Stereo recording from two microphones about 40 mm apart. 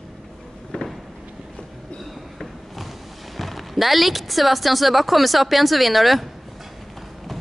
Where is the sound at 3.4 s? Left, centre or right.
Centre.